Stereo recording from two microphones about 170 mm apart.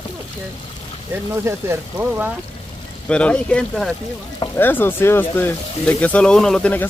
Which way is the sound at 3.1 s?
5° left (ahead or behind).